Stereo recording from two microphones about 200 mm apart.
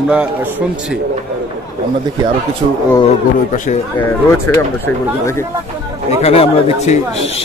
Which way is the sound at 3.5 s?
40° left (ahead or behind).